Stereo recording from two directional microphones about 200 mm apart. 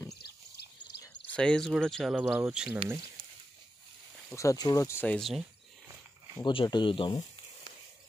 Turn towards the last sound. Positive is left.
turn(degrees=25)  # may be behind; listen again after turning